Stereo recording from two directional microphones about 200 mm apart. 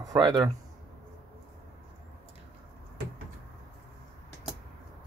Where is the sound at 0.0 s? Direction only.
20° right (ahead or behind).